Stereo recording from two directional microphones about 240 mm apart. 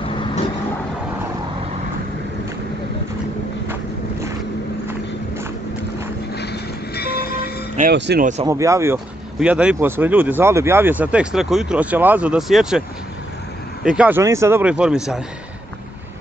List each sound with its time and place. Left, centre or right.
0.0 s vehicle: left
6.3 s vehicle: left
7.9 s speech: right
8.5 s speech: centre
13.8 s a man's voice: centre